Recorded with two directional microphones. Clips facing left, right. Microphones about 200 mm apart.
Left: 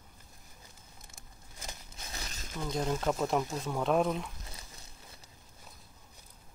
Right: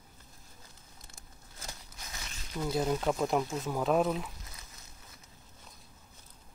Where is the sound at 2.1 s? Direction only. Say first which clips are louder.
Left 3 dB; 35° left (ahead or behind).